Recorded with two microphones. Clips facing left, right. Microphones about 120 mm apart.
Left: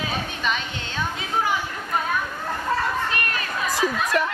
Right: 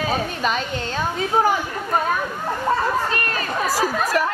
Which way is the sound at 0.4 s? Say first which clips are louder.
Right 4 dB; 40° right (ahead or behind).